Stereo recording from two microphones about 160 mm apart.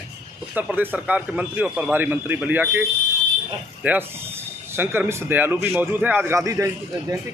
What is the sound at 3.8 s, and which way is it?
A man's voice, 10° right (ahead or behind).